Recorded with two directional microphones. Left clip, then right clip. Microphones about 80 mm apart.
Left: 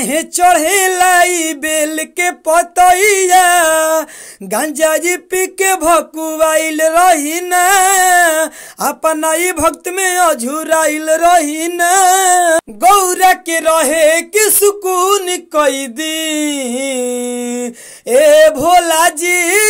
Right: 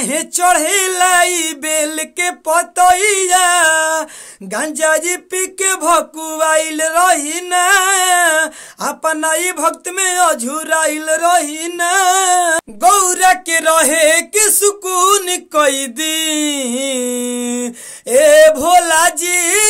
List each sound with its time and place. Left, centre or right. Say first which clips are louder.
0.0 s speech: left 3 dB; left
2.7 s speech: left 2 dB; left
4.5 s speech: left 2 dB; left
11.7 s speech: left 3 dB; left
12.0 s speech: left 2 dB; left
14.3 s speech: left 3 dB; left
15.0 s a sound: even; centre
18.0 s speech: even; left